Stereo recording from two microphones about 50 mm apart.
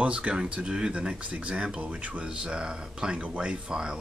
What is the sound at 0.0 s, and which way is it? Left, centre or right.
Speech, right.